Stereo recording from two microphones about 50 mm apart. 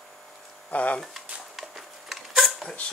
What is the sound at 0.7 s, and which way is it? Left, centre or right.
Speech, left.